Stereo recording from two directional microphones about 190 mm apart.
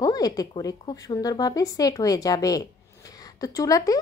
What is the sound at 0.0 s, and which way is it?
Speech, 20° left (ahead or behind).